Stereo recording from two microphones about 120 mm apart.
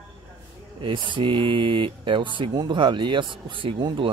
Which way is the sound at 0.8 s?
45° right (ahead or behind).